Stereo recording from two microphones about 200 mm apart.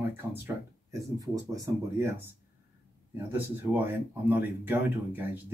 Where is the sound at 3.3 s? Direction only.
10° right (ahead or behind).